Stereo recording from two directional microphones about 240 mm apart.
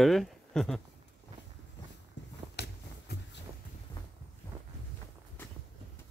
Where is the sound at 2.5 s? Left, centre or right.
Left.